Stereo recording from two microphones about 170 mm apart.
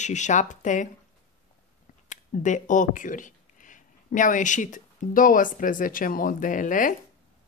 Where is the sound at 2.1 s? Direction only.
45° left (ahead or behind).